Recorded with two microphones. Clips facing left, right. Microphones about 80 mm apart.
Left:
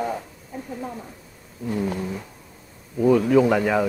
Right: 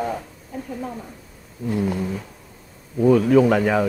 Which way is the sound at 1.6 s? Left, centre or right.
Centre.